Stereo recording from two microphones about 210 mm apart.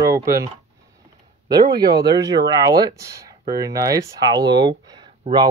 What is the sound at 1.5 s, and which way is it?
Speech, 20° right (ahead or behind).